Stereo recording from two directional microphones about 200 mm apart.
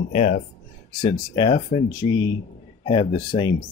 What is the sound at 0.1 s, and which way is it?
Speech, 35° left (ahead or behind).